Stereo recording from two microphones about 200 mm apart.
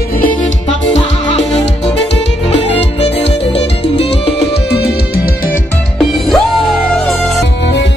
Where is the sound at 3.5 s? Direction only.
30° left (ahead or behind).